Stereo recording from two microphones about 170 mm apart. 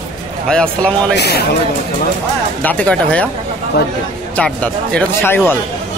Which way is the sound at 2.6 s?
10° left (ahead or behind).